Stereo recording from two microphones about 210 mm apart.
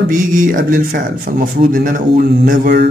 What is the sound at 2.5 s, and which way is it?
Mantra, 50° right (ahead or behind).